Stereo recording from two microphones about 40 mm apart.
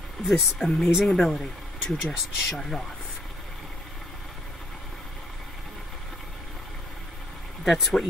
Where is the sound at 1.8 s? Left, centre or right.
Centre.